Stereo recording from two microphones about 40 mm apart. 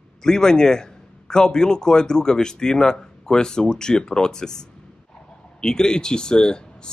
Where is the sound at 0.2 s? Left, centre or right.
Centre.